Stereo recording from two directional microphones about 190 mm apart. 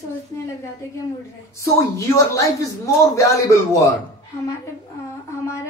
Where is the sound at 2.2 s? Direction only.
15° left (ahead or behind).